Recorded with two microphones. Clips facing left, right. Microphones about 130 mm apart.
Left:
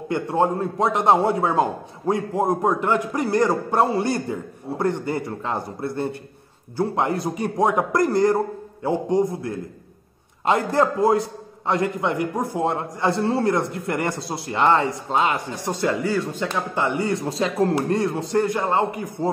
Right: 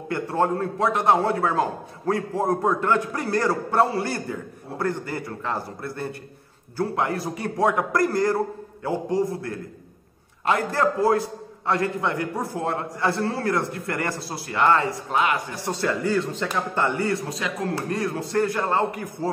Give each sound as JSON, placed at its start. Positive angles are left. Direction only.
{"t": 0.1, "sound": "a man's voice", "side_deg": 20}